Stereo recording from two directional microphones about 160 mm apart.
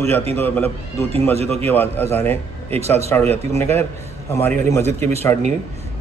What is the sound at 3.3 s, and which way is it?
A man's voice, 15° left (ahead or behind).